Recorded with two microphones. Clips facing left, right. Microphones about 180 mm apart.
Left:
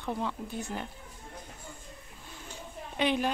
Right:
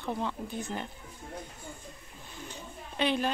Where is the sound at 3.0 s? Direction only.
15° left (ahead or behind).